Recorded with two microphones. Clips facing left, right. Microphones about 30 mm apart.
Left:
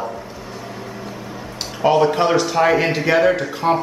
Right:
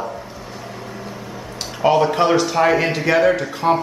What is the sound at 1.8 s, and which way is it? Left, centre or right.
Speech, centre.